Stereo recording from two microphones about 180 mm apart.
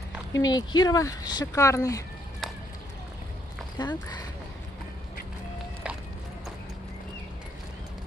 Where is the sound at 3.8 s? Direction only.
25° left (ahead or behind).